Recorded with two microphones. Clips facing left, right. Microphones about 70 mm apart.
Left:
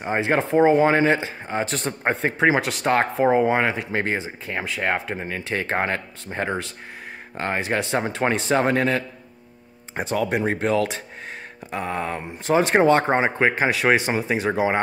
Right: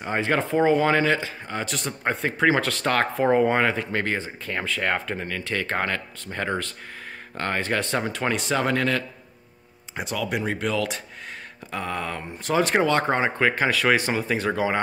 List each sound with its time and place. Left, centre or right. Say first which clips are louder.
0.0 s speech: left 2 dB; left
2.3 s speech: right 1 dB; centre
3.3 s speech: even; centre; by 9.0 s left
9.9 s speech: left 4 dB; left